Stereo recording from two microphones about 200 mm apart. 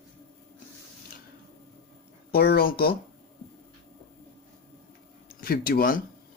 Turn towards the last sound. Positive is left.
turn(degrees=45)  # may be behind; listen again after turning